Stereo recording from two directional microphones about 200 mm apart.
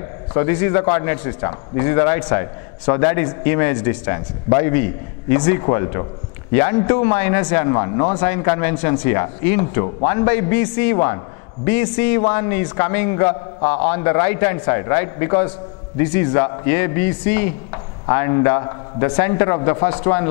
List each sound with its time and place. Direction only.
0.4 s a man's voice: 15° left (ahead or behind)